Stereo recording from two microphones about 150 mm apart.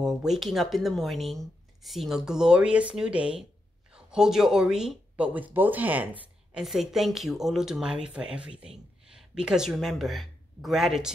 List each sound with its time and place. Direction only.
0.0 s speech: centre (ahead or behind)